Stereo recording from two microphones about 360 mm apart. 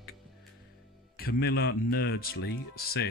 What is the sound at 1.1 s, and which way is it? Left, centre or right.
Speech, left.